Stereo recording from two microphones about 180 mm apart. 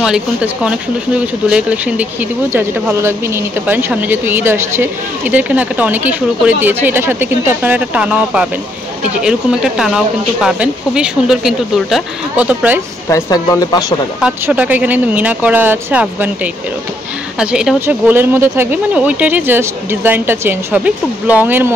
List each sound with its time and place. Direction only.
0.0 s speech: 5° right (ahead or behind)
13.1 s speech: 20° left (ahead or behind)
14.2 s speech: 10° right (ahead or behind)
17.4 s speech: 5° right (ahead or behind)